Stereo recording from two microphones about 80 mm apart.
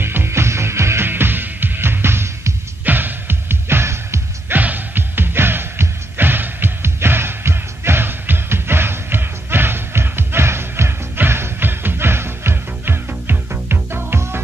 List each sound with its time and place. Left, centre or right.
0.0 s music: right
4.6 s music: right